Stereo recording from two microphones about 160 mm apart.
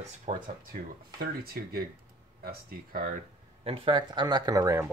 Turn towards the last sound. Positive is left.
turn(degrees=-20)  # may be behind; listen again after turning